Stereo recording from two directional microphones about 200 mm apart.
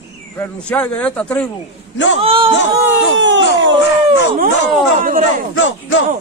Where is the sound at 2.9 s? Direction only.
65° right (ahead or behind).